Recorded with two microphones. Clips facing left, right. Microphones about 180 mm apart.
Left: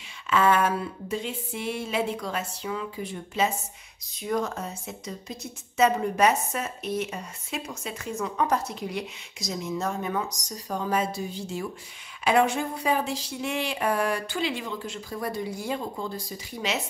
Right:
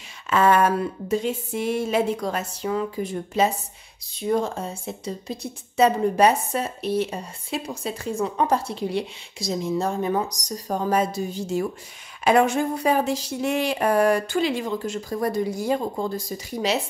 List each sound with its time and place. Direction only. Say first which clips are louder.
0.3 s speech: right 4 dB; 40° right (ahead or behind)
4.1 s a woman's voice: right 5 dB; 30° right (ahead or behind)